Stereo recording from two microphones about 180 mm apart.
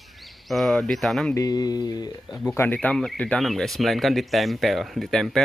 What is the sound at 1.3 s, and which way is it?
Speech, 20° left (ahead or behind).